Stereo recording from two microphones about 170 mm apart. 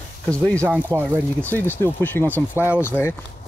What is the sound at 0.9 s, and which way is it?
Speech, 20° right (ahead or behind).